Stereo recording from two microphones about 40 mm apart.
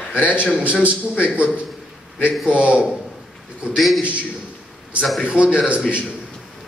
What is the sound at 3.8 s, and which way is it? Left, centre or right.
Speech, centre.